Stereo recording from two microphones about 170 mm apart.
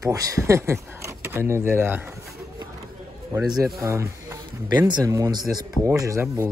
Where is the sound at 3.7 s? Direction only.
15° right (ahead or behind).